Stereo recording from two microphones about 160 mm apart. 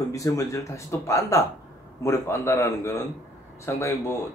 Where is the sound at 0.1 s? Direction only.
20° left (ahead or behind).